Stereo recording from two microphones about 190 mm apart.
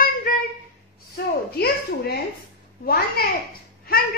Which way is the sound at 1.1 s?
55° left (ahead or behind).